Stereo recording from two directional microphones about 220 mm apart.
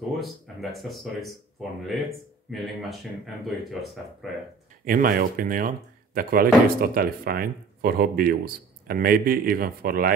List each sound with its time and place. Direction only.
0.2 s speech: centre (ahead or behind)
2.5 s speech: centre (ahead or behind)
4.8 s speech: 40° right (ahead or behind)